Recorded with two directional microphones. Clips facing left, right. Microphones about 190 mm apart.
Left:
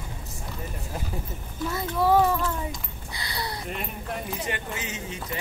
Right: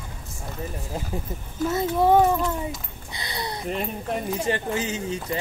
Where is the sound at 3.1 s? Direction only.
20° right (ahead or behind).